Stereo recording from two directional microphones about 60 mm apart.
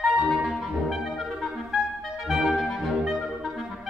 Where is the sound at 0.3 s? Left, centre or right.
Centre.